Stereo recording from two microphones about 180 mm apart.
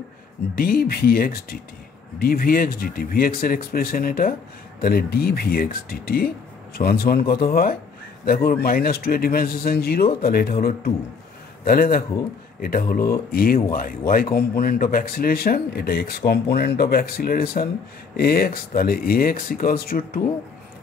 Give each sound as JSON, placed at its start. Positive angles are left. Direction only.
{"t": 0.6, "sound": "speech", "side_deg": 55}